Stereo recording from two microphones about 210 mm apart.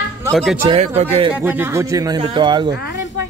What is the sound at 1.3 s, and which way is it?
Speech, 10° right (ahead or behind).